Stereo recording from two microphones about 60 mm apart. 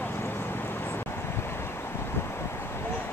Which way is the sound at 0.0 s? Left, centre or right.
Left.